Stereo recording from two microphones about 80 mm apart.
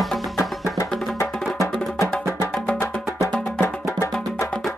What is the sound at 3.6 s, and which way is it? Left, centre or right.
Music, left.